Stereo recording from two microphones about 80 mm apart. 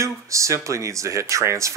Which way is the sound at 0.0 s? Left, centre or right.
Right.